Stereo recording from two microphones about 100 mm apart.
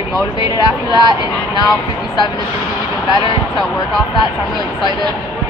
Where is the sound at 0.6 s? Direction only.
45° left (ahead or behind).